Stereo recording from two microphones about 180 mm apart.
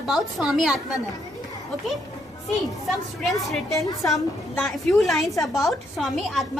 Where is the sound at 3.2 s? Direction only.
Centre (ahead or behind).